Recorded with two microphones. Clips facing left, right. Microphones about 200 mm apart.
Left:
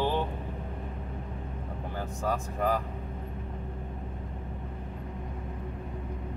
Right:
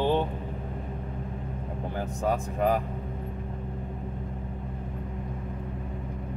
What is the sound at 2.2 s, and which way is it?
Speech, 20° right (ahead or behind).